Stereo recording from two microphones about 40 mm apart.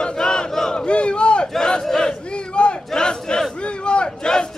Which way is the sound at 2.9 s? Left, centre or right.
Centre.